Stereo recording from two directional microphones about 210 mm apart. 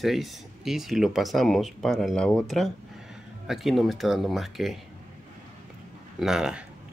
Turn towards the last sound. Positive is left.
turn(degrees=-5)  # may be behind; listen again after turning